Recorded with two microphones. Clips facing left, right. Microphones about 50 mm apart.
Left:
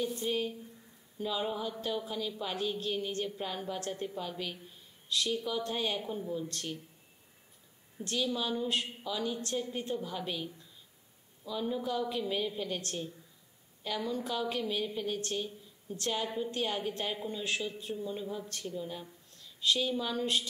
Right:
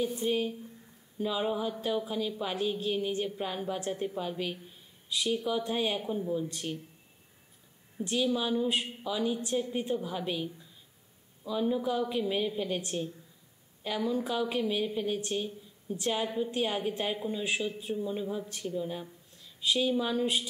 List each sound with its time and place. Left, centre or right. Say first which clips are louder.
0.0 s a woman's voice: right 3 dB; centre
8.0 s a woman's voice: right 4 dB; centre
11.4 s a woman's voice: right 5 dB; centre